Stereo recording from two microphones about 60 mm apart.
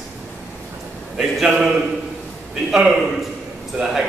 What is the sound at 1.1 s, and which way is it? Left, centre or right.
Speech, centre.